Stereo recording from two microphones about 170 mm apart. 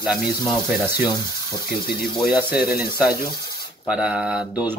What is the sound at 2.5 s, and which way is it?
Speech, 65° left (ahead or behind).